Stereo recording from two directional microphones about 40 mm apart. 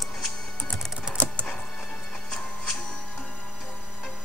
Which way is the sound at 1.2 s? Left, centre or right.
Left.